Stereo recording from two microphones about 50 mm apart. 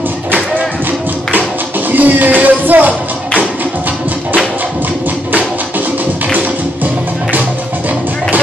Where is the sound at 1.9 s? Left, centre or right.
Right.